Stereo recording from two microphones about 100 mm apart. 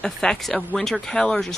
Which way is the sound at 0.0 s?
5° left (ahead or behind).